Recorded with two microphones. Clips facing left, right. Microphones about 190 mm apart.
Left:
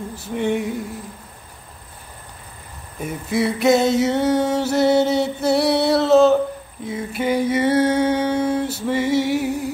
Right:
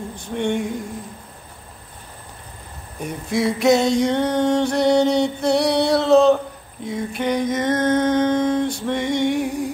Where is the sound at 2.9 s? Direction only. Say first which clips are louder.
Left 1 dB; centre (ahead or behind).